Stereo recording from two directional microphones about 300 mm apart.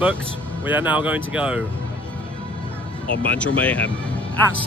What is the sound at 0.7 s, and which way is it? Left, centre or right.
Speech, centre.